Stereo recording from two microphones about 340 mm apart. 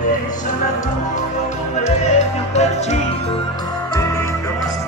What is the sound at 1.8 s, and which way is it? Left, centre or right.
Music, centre.